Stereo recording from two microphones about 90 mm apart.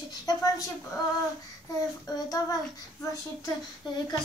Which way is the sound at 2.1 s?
45° left (ahead or behind).